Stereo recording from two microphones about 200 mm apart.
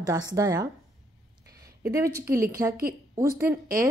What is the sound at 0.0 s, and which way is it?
Speech, 20° right (ahead or behind).